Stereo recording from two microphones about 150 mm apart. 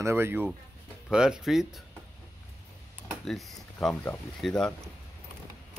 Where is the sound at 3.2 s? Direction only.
Centre (ahead or behind).